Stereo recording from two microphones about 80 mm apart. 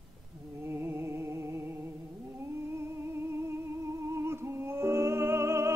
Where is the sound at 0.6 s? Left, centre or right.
Right.